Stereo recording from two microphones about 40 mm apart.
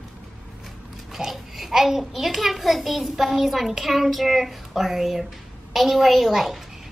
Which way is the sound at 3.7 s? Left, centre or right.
Centre.